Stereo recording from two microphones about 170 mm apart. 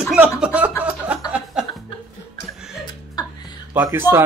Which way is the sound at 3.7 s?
20° right (ahead or behind).